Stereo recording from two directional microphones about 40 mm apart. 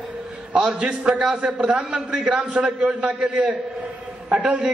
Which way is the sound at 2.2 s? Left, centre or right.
Right.